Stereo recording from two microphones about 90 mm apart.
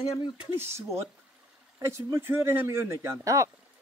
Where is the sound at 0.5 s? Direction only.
30° right (ahead or behind).